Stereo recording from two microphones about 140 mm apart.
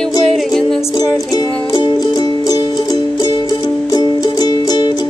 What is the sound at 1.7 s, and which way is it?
Music, 30° left (ahead or behind).